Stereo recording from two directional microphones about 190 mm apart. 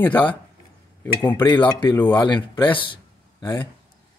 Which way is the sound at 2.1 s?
20° left (ahead or behind).